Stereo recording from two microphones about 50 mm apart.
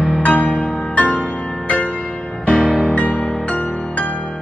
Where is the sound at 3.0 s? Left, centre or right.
Left.